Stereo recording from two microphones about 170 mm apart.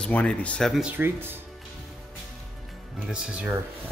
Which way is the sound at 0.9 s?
10° right (ahead or behind).